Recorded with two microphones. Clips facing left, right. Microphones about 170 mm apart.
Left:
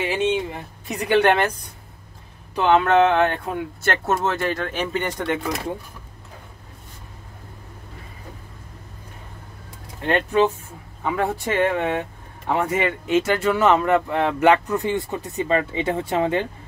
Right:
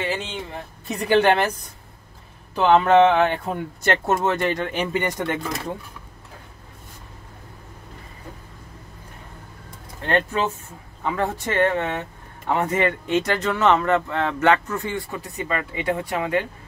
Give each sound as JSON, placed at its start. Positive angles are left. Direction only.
{"t": 0.0, "sound": "speech", "side_deg": 10}
{"t": 2.5, "sound": "speech", "side_deg": 0}
{"t": 3.8, "sound": "speech", "side_deg": -15}
{"t": 10.0, "sound": "speech", "side_deg": 15}